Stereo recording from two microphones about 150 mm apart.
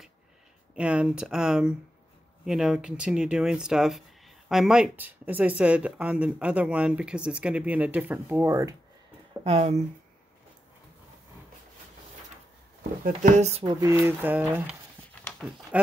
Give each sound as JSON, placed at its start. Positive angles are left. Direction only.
{"t": 0.7, "sound": "speech", "side_deg": -5}
{"t": 9.4, "sound": "speech", "side_deg": -45}
{"t": 13.0, "sound": "speech", "side_deg": -55}
{"t": 13.7, "sound": "speech", "side_deg": -25}